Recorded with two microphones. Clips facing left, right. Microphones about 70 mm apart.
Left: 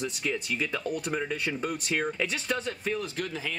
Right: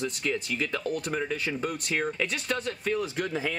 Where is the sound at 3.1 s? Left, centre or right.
Right.